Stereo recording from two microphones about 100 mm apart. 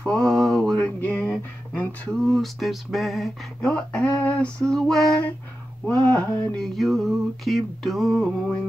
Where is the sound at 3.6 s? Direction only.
10° left (ahead or behind).